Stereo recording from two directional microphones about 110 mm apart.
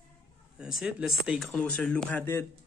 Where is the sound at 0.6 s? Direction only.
5° right (ahead or behind).